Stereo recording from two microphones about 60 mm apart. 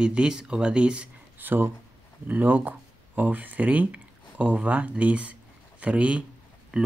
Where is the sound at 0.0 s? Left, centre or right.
Centre.